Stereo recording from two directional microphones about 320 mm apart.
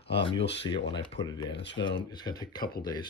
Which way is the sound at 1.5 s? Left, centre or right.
Left.